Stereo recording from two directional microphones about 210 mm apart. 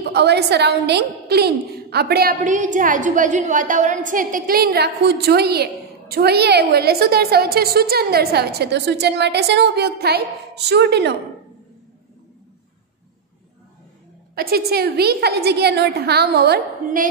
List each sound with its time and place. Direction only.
0.1 s a woman's voice: 50° right (ahead or behind)
14.3 s a woman's voice: 45° right (ahead or behind)